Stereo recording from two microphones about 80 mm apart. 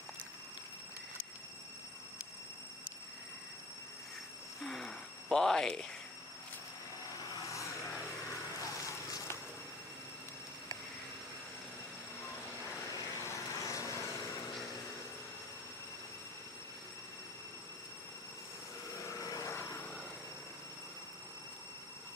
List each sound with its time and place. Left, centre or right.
4.6 s a sound: centre
7.2 s vehicle: left
12.9 s vehicle: left
18.9 s light engine: left
19.5 s vehicle: left